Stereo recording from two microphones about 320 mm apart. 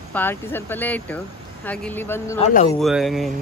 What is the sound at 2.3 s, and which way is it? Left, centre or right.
Speech, left.